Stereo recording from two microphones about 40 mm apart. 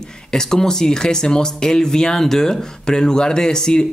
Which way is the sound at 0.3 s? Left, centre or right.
Centre.